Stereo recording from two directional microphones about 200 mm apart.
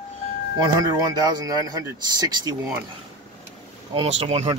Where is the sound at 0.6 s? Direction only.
20° right (ahead or behind).